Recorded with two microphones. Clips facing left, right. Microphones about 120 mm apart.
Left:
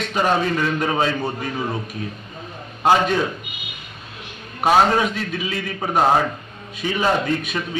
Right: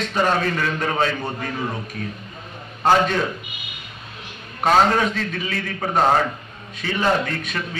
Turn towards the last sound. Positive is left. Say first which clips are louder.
# left 4 dB
turn(degrees=15)  # may be behind; listen again after turning